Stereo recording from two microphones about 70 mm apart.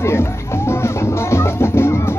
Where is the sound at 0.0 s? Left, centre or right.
Left.